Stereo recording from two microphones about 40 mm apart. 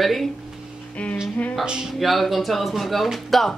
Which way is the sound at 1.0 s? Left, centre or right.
Left.